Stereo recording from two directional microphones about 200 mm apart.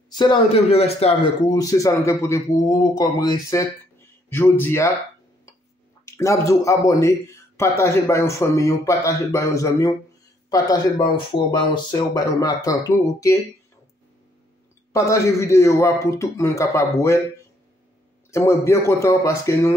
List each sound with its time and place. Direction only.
0.1 s a man's voice: 25° left (ahead or behind)
1.5 s speech: 15° left (ahead or behind)
6.0 s speech: 15° left (ahead or behind)
14.9 s speech: 15° left (ahead or behind)
18.3 s speech: 15° left (ahead or behind)